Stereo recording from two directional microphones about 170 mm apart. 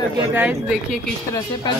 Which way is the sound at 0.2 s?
15° right (ahead or behind).